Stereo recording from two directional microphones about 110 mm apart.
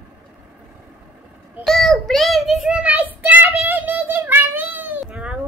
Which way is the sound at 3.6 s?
15° right (ahead or behind).